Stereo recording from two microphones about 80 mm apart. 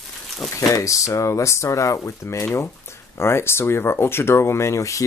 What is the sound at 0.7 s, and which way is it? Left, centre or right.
Speech, left.